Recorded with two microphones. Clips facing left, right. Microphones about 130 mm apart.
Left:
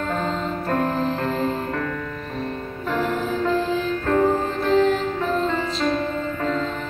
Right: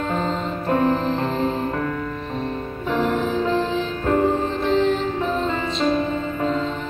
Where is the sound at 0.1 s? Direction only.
15° right (ahead or behind).